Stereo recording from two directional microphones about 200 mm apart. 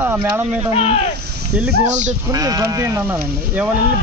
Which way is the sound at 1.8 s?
35° right (ahead or behind).